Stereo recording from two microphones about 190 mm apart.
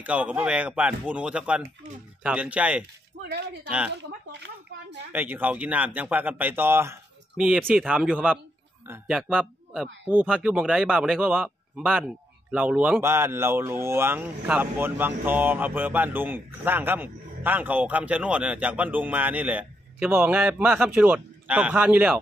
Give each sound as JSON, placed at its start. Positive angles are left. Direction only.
{"t": 0.0, "sound": "a man's voice", "side_deg": -5}
{"t": 3.9, "sound": "speech", "side_deg": -65}
{"t": 5.1, "sound": "a man's voice", "side_deg": -10}